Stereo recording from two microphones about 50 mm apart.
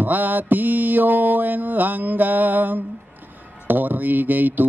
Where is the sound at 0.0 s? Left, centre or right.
Right.